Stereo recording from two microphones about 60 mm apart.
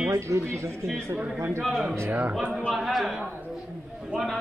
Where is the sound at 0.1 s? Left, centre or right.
Right.